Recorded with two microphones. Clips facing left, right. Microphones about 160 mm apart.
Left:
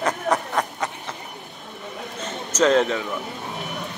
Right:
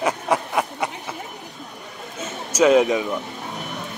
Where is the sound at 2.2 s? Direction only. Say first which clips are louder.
Right 2 dB; 10° right (ahead or behind).